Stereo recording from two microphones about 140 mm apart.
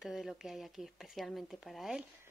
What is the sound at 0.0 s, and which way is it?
Speech, centre (ahead or behind).